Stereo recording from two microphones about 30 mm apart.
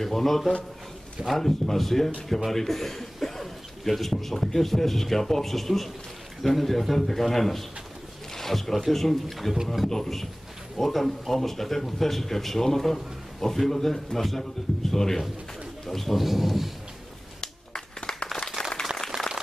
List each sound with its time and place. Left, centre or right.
0.0 s a man's voice: centre
2.5 s a sound: centre
3.9 s a man's voice: centre
16.2 s a man's voice: centre
17.4 s a sound: left
19.1 s applause: right